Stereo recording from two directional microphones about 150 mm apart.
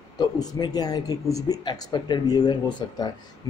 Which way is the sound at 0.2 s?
25° left (ahead or behind).